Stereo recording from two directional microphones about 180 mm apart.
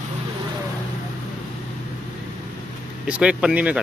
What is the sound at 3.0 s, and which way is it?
Speech, 5° right (ahead or behind).